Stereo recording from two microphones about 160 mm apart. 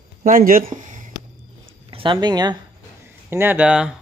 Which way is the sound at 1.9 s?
30° right (ahead or behind).